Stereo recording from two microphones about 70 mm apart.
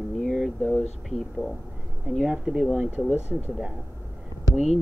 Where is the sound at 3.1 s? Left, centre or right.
Left.